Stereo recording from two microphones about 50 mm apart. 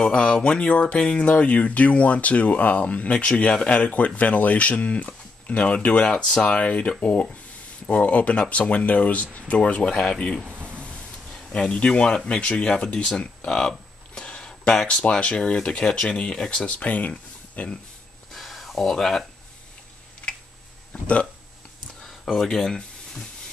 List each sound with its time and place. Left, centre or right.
0.0 s speech: centre
11.5 s speech: centre
18.3 s a sound: centre
18.9 s speech: centre
20.2 s tick: left
20.9 s speech: left
22.0 s a sound: centre